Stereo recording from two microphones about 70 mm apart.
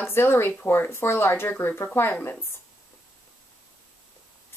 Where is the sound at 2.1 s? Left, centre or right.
Left.